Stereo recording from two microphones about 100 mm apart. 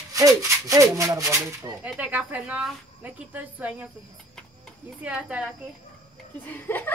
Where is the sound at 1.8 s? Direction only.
15° right (ahead or behind).